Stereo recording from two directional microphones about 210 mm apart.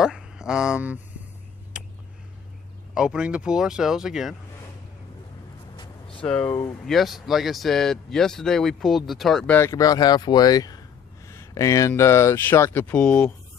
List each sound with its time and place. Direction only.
0.0 s speech: 5° right (ahead or behind)
1.7 s a sound: 5° right (ahead or behind)
2.9 s speech: 5° right (ahead or behind)
5.8 s vehicle: 25° left (ahead or behind)
6.2 s speech: 5° left (ahead or behind)